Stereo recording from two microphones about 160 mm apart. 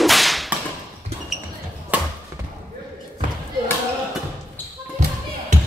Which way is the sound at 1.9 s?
10° right (ahead or behind).